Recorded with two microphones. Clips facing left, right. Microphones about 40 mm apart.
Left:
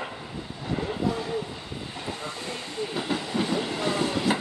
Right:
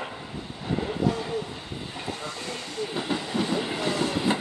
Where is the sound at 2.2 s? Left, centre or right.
Left.